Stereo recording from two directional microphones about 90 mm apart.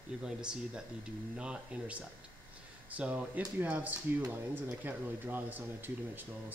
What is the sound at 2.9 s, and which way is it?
Speech, 15° right (ahead or behind).